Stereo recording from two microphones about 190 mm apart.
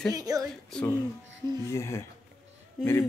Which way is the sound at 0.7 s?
5° left (ahead or behind).